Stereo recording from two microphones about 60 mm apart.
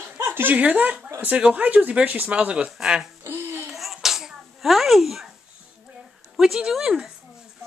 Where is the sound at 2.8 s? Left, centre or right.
Centre.